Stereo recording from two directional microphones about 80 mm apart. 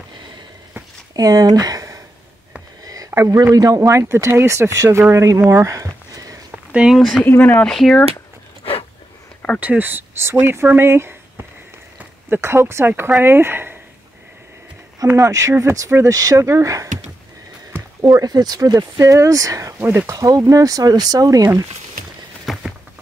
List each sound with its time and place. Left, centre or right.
1.1 s speech: right
2.8 s a sound: right
3.5 s speech: right
5.5 s a sound: right
6.7 s speech: centre
7.2 s speech: left
7.6 s speech: centre
9.6 s speech: right
15.1 s speech: right
18.1 s speech: right
18.8 s speech: right
22.5 s a sound: centre